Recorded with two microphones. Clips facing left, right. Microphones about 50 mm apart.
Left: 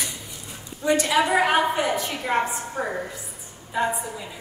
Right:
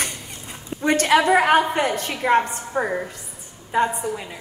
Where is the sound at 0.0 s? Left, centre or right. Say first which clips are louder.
Right 4 dB; right.